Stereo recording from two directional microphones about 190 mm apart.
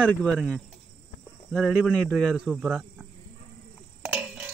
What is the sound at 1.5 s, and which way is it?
Speech, 5° right (ahead or behind).